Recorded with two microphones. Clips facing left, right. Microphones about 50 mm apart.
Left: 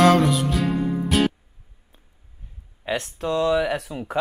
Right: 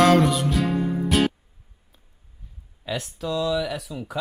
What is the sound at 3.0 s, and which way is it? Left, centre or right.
Speech, left.